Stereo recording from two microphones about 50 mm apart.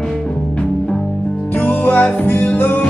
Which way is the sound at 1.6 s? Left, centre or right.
Left.